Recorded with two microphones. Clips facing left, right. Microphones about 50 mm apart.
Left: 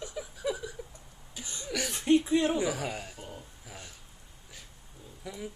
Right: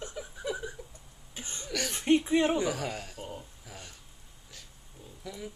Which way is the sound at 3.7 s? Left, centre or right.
Centre.